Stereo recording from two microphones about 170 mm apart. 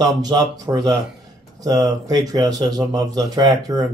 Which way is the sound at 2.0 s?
20° right (ahead or behind).